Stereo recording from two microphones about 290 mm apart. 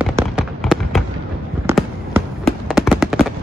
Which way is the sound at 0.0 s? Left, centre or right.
Centre.